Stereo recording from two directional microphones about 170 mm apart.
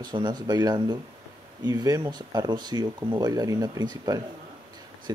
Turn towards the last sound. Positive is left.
turn(degrees=-20)  # may be behind; listen again after turning